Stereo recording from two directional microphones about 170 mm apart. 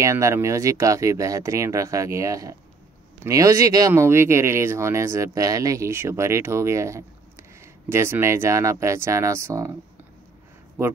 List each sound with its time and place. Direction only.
0.0 s speech: 15° right (ahead or behind)